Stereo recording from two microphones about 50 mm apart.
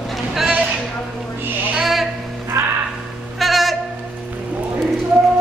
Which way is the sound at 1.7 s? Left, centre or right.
Centre.